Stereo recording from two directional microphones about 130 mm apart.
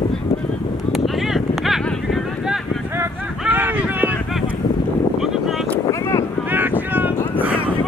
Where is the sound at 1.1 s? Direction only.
Centre (ahead or behind).